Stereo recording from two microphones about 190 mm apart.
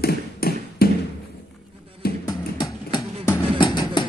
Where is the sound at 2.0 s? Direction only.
55° left (ahead or behind).